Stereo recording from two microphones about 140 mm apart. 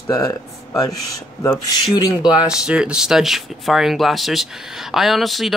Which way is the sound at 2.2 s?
5° right (ahead or behind).